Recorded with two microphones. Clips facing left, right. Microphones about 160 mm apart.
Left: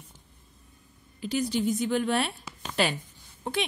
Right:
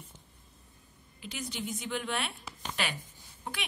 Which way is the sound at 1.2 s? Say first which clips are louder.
Left 12 dB; 35° left (ahead or behind).